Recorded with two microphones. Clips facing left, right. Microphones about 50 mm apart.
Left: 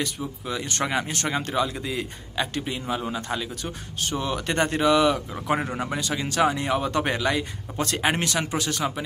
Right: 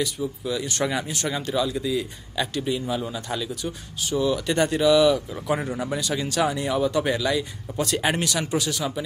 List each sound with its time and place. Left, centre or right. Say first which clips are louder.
0.2 s a man's voice: right 3 dB; left
1.1 s a man's voice: even; left